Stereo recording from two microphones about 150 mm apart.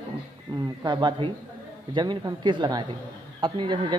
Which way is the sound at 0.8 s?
30° right (ahead or behind).